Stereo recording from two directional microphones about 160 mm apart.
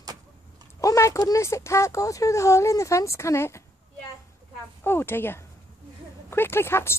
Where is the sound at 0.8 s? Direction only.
20° left (ahead or behind).